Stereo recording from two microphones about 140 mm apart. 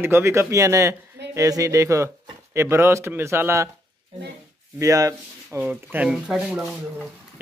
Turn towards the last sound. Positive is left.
turn(degrees=-5)  # may be behind; listen again after turning